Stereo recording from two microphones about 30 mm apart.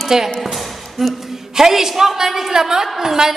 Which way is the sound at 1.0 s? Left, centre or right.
Centre.